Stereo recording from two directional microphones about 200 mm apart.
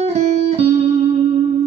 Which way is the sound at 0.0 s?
30° right (ahead or behind).